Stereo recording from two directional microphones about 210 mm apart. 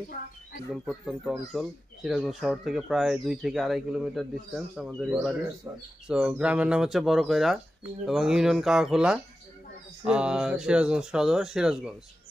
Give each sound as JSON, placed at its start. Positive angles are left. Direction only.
{"t": 0.7, "sound": "speech", "side_deg": 0}
{"t": 5.7, "sound": "speech", "side_deg": -15}
{"t": 6.0, "sound": "speech", "side_deg": -5}